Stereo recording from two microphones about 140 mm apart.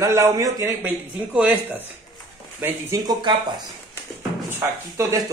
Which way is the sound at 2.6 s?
25° right (ahead or behind).